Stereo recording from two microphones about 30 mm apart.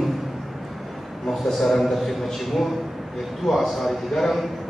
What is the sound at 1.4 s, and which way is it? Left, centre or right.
A man's voice, centre.